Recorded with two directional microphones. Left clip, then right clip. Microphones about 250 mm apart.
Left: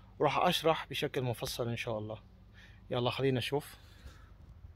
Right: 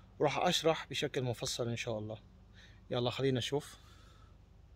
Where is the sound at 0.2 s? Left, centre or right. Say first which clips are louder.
Left 2 dB; centre.